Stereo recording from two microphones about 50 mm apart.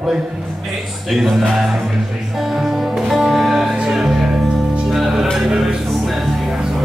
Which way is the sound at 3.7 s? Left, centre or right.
Centre.